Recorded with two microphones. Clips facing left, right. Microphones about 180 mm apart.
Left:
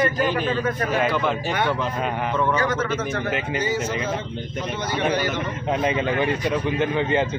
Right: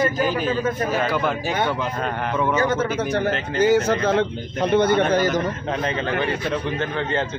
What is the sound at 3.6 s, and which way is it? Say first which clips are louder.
Speech: right 11 dB; 70° right (ahead or behind).